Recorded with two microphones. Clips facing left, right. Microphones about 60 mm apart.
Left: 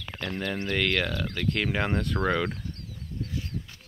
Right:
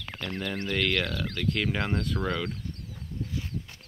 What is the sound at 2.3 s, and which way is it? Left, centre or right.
Speech, left.